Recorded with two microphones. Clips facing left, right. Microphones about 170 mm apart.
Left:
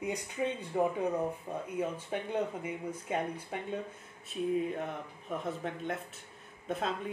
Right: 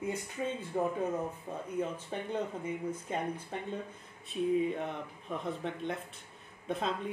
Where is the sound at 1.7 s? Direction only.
10° left (ahead or behind).